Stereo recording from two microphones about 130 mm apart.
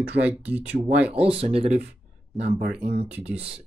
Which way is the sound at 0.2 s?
10° right (ahead or behind).